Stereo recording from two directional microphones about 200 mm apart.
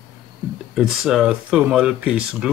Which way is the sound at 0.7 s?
5° right (ahead or behind).